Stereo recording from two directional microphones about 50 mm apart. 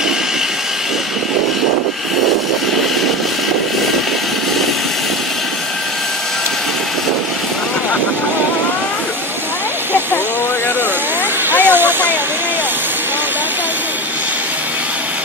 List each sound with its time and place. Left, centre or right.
11.5 s vehicle: right